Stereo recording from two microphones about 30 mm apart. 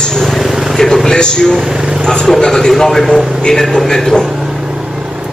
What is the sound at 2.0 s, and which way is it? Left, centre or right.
A man's voice, centre.